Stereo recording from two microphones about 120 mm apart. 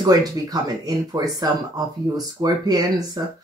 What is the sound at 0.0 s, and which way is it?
Speech, 35° right (ahead or behind).